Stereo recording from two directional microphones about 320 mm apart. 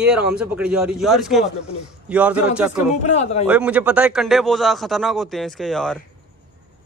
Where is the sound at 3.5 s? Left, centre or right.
Centre.